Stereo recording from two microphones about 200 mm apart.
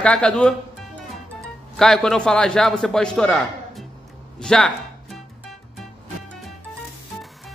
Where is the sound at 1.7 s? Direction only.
Centre (ahead or behind).